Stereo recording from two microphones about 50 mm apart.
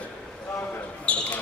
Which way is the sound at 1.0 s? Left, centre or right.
Left.